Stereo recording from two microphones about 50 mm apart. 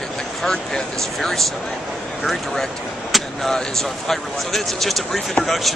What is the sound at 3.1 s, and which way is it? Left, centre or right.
Vehicle, centre.